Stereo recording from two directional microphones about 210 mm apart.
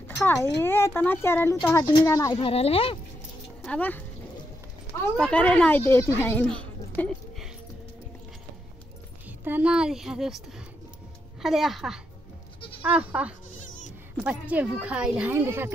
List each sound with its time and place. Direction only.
0.2 s speech: 15° left (ahead or behind)
3.6 s speech: 5° left (ahead or behind)
5.1 s speech: 5° left (ahead or behind)
9.4 s a woman's voice: 10° right (ahead or behind)
11.4 s a woman's voice: centre (ahead or behind)
13.7 s bleat: 35° left (ahead or behind)
14.2 s speech: 5° right (ahead or behind)